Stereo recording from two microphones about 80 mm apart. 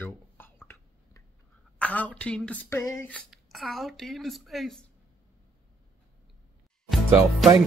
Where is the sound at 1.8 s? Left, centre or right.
Centre.